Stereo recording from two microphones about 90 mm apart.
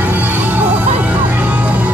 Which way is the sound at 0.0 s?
15° right (ahead or behind).